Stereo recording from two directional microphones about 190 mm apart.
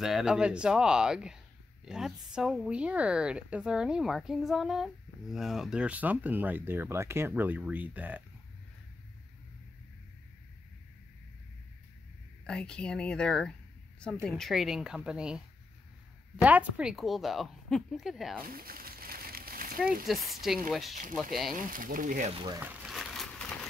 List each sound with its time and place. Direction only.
0.0 s a woman's voice: 5° right (ahead or behind)
12.4 s a woman's voice: 5° left (ahead or behind)
16.4 s a woman's voice: 5° right (ahead or behind)
18.5 s a sound: 50° right (ahead or behind)
20.1 s a woman's voice: centre (ahead or behind)
21.7 s speech: 45° right (ahead or behind)
22.6 s crumpling: 5° right (ahead or behind)